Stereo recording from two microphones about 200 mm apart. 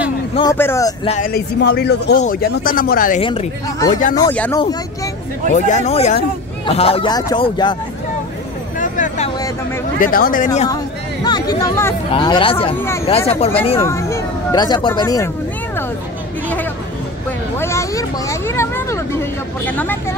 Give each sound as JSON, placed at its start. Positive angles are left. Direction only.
{"t": 0.4, "sound": "speech", "side_deg": 15}
{"t": 1.0, "sound": "speech", "side_deg": 35}
{"t": 1.3, "sound": "a man's voice", "side_deg": 55}
{"t": 3.2, "sound": "speech", "side_deg": 30}
{"t": 4.3, "sound": "speech", "side_deg": 10}
{"t": 5.5, "sound": "speech", "side_deg": 35}
{"t": 8.7, "sound": "vehicle", "side_deg": 40}
{"t": 9.9, "sound": "speech", "side_deg": 45}
{"t": 11.2, "sound": "speech", "side_deg": 20}
{"t": 12.7, "sound": "speech", "side_deg": 10}
{"t": 13.3, "sound": "speech", "side_deg": 30}
{"t": 13.7, "sound": "speech", "side_deg": 15}
{"t": 17.6, "sound": "vehicle", "side_deg": 15}